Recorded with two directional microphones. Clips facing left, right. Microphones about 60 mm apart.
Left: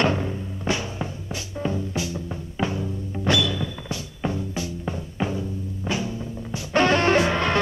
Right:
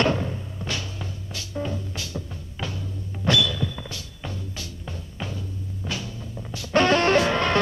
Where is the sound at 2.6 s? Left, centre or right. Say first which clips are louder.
Left 7 dB; left.